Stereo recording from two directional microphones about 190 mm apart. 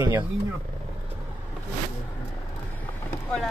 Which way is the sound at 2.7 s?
10° left (ahead or behind).